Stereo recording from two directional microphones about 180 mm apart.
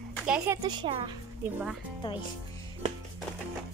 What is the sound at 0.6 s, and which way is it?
Speech, 25° right (ahead or behind).